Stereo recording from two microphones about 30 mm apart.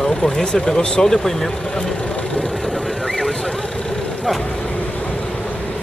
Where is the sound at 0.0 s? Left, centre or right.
Left.